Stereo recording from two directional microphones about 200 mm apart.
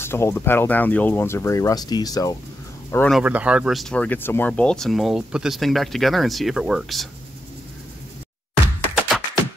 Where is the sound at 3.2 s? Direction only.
5° right (ahead or behind).